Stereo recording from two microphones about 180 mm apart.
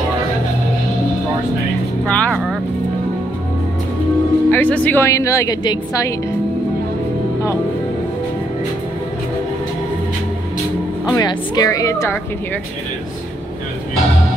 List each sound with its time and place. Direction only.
2.0 s vehicle: 5° left (ahead or behind)
4.5 s speech: 10° left (ahead or behind)
11.1 s a woman's voice: 20° left (ahead or behind)